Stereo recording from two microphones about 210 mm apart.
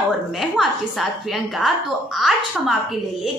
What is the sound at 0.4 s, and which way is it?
Speech, centre (ahead or behind).